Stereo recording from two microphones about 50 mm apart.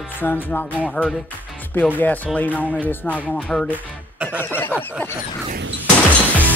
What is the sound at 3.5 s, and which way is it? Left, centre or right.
Speech, centre.